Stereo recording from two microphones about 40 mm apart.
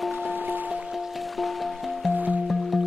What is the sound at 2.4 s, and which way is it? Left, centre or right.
Music, centre.